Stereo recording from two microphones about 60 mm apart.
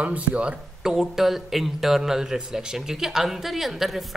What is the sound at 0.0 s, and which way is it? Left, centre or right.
Speech, right.